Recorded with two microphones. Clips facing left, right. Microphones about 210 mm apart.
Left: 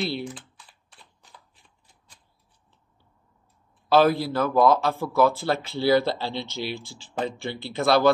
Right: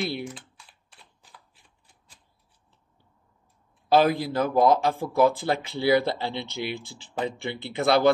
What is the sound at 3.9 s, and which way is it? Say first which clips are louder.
A man's voice: left 1 dB; 15° right (ahead or behind).